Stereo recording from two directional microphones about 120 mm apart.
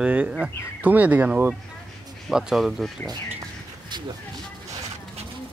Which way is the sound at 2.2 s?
5° right (ahead or behind).